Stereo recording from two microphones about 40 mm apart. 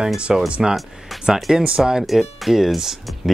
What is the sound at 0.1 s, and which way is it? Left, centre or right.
Speech, centre.